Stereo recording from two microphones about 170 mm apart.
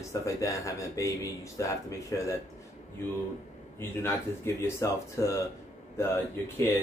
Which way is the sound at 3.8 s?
15° left (ahead or behind).